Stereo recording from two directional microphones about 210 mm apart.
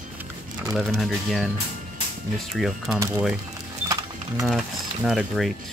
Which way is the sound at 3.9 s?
15° right (ahead or behind).